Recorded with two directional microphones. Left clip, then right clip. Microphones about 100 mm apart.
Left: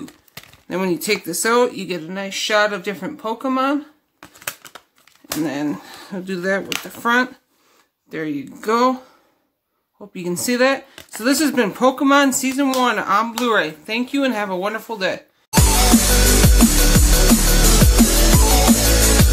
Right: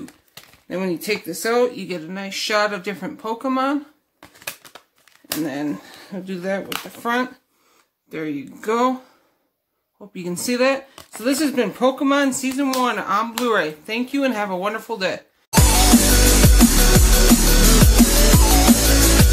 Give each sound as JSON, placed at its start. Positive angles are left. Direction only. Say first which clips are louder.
{"t": 0.7, "sound": "speech", "louder": "left 3 dB", "side_deg": 45}
{"t": 4.2, "sound": "a sound", "louder": "left 3 dB", "side_deg": -5}
{"t": 5.4, "sound": "speech", "louder": "left 3 dB", "side_deg": 25}
{"t": 8.1, "sound": "speech", "louder": "left 2 dB", "side_deg": 20}
{"t": 9.9, "sound": "speech", "louder": "left 4 dB", "side_deg": 20}
{"t": 12.8, "sound": "a sound", "louder": "left 4 dB", "side_deg": 20}
{"t": 17.9, "sound": "music", "louder": "even", "side_deg": 0}